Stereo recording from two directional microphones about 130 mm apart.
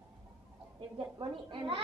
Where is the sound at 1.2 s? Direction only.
45° right (ahead or behind).